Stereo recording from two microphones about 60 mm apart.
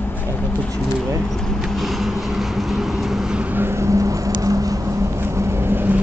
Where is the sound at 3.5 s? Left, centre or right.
Right.